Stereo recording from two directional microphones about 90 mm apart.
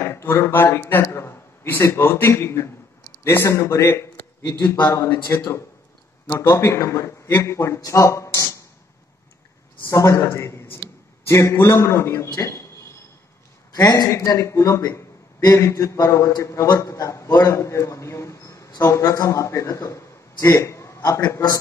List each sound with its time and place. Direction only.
0.0 s a man's voice: 25° left (ahead or behind)
9.8 s a man's voice: 35° left (ahead or behind)
13.7 s a man's voice: 45° left (ahead or behind)
14.1 s a man's voice: 35° left (ahead or behind)